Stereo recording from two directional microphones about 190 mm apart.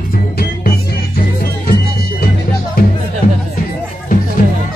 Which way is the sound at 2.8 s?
50° left (ahead or behind).